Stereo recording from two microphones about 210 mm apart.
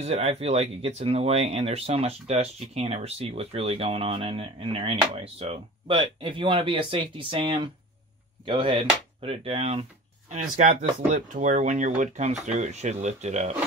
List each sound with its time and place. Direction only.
0.0 s speech: 30° right (ahead or behind)